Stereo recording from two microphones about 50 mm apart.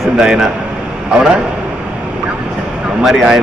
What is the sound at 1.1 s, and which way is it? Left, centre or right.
Speech, centre.